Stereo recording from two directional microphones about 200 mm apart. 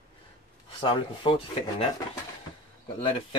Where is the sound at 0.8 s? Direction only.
25° left (ahead or behind).